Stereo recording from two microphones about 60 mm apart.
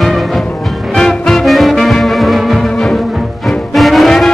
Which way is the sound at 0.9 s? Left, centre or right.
Centre.